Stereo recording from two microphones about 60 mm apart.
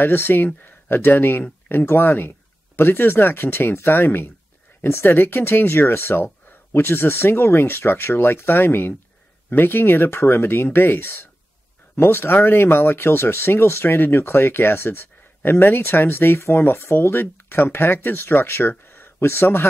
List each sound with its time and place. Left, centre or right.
0.0 s speech: left